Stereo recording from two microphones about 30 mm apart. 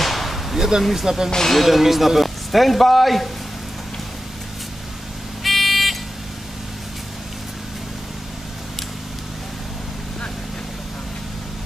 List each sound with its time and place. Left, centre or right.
0.0 s a sound: centre
0.6 s speech: centre
1.5 s speech: centre
5.4 s buzzer: centre